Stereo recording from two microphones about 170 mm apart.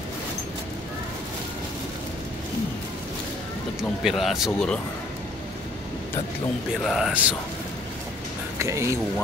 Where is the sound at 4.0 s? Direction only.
Centre (ahead or behind).